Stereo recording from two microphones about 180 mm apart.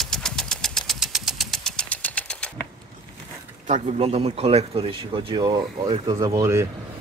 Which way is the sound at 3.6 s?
40° right (ahead or behind).